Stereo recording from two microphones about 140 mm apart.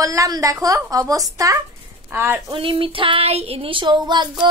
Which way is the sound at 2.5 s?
40° right (ahead or behind).